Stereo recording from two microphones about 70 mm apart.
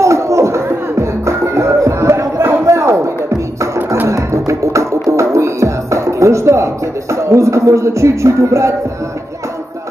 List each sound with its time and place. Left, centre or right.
0.0 s music: right